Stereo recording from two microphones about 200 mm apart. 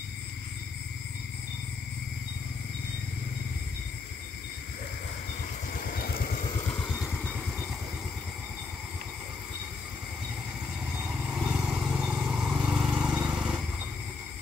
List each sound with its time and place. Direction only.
5.7 s vehicle: 45° left (ahead or behind)
6.4 s vehicle: 25° left (ahead or behind)
6.8 s vehicle: 10° left (ahead or behind)
11.1 s vehicle: 10° right (ahead or behind)